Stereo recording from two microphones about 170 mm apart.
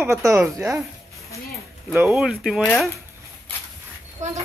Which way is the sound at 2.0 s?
5° right (ahead or behind).